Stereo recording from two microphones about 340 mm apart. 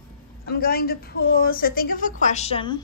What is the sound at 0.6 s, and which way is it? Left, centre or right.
A woman's voice, left.